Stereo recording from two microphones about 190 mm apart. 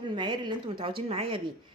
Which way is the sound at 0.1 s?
25° right (ahead or behind).